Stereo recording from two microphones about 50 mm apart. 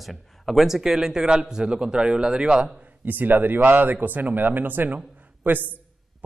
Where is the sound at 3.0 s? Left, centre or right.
Right.